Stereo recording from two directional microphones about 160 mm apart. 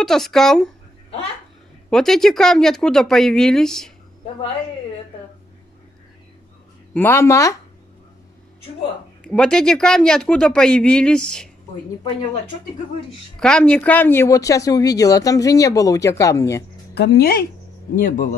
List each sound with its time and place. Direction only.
0.0 s speech: centre (ahead or behind)
1.9 s speech: 5° left (ahead or behind)
6.9 s speech: 15° left (ahead or behind)
9.2 s speech: 5° left (ahead or behind)
13.4 s speech: 5° left (ahead or behind)
16.9 s speech: 90° left
17.9 s speech: 60° left (ahead or behind)